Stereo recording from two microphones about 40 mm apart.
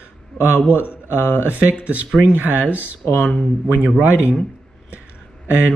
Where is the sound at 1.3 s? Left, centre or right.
Right.